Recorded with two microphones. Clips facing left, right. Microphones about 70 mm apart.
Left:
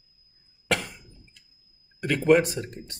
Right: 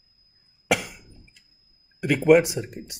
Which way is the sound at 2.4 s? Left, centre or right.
Centre.